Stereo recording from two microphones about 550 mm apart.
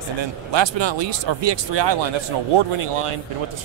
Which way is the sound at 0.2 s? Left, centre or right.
Right.